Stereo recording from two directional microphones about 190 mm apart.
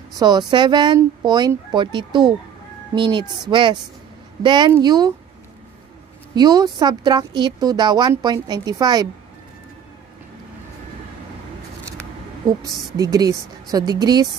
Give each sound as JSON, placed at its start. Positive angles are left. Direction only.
{"t": 0.2, "sound": "speech", "side_deg": -20}
{"t": 6.3, "sound": "speech", "side_deg": -20}
{"t": 12.9, "sound": "speech", "side_deg": -20}